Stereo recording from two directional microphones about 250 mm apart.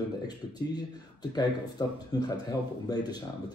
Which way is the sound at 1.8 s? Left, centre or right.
Centre.